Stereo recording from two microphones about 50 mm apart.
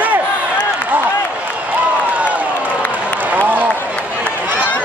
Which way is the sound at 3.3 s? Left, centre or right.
Right.